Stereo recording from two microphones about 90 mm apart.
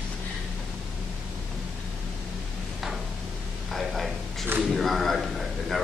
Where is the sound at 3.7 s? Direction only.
Centre (ahead or behind).